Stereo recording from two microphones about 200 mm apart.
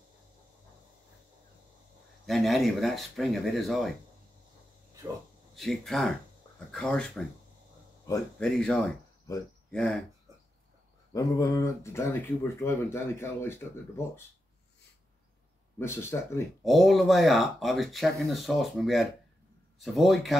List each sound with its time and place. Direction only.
2.2 s speech: centre (ahead or behind)
5.6 s speech: centre (ahead or behind)
8.4 s speech: 5° left (ahead or behind)
9.3 s speech: 15° left (ahead or behind)
9.7 s speech: 5° left (ahead or behind)
11.1 s speech: 15° left (ahead or behind)
15.8 s speech: 10° left (ahead or behind)
16.6 s speech: centre (ahead or behind)